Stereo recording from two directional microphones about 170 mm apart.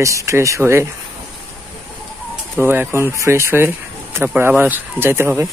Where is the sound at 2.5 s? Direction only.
10° right (ahead or behind).